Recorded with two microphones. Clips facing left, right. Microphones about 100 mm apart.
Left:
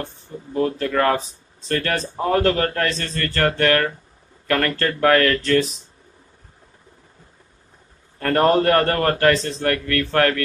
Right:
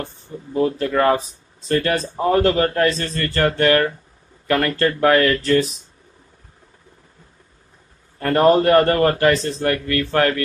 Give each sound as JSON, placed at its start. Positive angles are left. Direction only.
{"t": 0.5, "sound": "a man's voice", "side_deg": -20}
{"t": 8.2, "sound": "a man's voice", "side_deg": -10}